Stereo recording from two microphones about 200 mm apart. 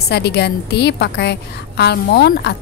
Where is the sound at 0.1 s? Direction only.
55° left (ahead or behind).